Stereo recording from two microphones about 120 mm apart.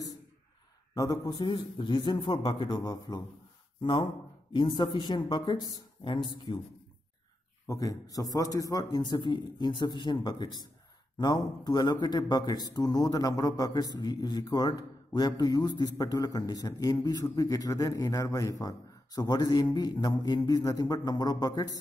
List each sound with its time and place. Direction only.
0.9 s a man's voice: 30° left (ahead or behind)
7.6 s a man's voice: 30° left (ahead or behind)